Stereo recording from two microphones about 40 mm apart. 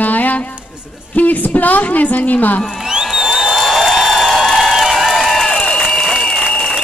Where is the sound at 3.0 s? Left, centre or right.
Centre.